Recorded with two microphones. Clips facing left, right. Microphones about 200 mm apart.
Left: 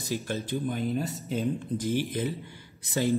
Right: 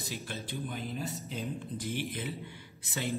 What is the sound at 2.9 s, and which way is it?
Speech, 35° left (ahead or behind).